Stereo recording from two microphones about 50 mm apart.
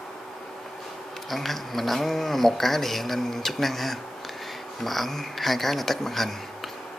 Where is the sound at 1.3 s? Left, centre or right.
Centre.